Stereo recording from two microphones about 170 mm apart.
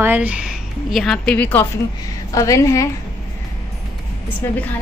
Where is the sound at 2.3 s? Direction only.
20° left (ahead or behind).